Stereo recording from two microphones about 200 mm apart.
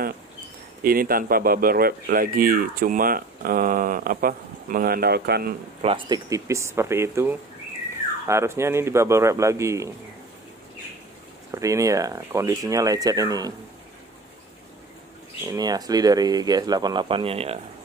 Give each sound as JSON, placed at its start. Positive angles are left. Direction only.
{"t": 0.8, "sound": "speech", "side_deg": -45}
{"t": 5.8, "sound": "speech", "side_deg": -25}
{"t": 11.5, "sound": "speech", "side_deg": -15}
{"t": 15.5, "sound": "speech", "side_deg": -20}